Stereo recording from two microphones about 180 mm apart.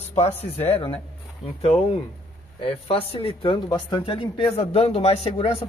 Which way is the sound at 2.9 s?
30° left (ahead or behind).